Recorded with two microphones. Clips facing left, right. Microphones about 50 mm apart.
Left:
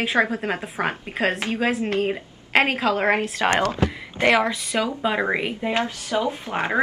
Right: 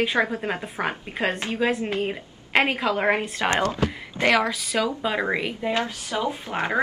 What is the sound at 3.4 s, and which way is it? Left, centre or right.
Speech, left.